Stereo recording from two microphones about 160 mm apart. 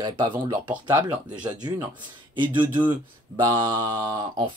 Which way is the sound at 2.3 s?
30° right (ahead or behind).